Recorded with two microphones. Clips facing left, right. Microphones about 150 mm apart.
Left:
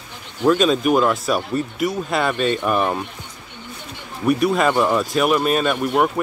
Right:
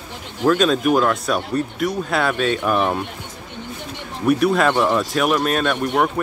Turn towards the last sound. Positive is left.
turn(degrees=5)  # may be behind; listen again after turning